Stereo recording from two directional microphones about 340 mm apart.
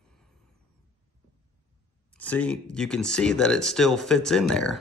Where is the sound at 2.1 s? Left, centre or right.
Centre.